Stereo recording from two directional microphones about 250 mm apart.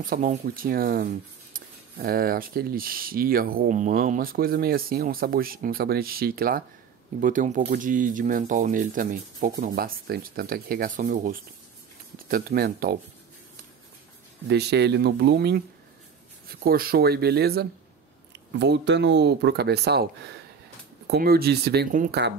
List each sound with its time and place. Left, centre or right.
0.0 s speech: right
14.5 s speech: right
21.1 s speech: right